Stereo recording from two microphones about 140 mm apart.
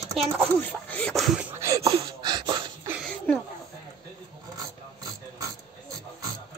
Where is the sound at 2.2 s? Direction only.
35° right (ahead or behind).